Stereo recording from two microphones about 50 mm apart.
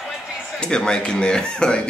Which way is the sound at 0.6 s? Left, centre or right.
Centre.